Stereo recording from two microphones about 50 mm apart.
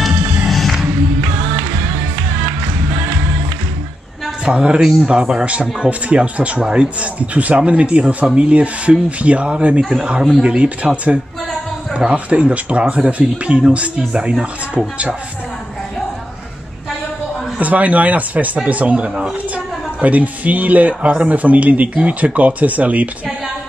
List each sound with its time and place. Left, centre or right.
0.5 s music: centre
4.5 s speech: right
9.8 s a man's voice: centre
10.4 s speech: right
11.9 s speech: right
17.6 s a woman's voice: right